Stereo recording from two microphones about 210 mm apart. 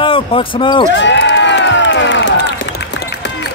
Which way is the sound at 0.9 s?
60° left (ahead or behind).